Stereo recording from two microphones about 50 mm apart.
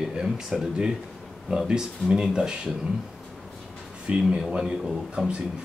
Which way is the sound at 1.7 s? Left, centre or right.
Centre.